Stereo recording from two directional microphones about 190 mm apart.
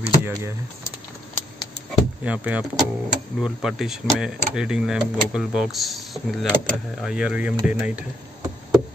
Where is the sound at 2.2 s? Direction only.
5° right (ahead or behind).